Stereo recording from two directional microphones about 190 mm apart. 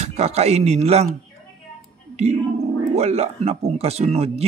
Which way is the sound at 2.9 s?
35° right (ahead or behind).